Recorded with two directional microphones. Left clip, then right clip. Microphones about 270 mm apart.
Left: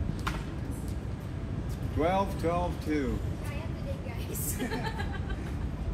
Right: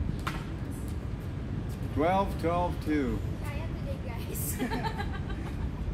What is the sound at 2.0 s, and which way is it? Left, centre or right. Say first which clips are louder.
Speech: right 1 dB; right.